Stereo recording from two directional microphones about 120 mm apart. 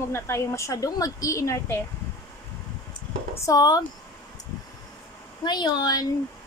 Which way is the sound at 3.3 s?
30° left (ahead or behind).